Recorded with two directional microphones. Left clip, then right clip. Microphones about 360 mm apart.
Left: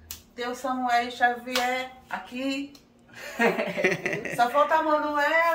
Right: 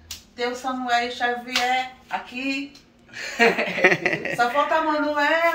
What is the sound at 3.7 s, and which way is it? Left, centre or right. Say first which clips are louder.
Speech: right 7 dB; centre.